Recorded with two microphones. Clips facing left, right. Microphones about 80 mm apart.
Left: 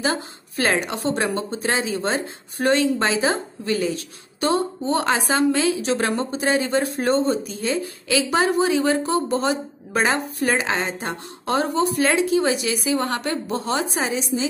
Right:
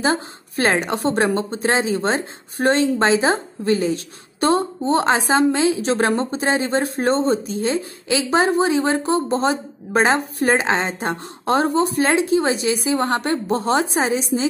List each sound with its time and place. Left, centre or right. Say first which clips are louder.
0.0 s a woman's voice: right 4 dB; right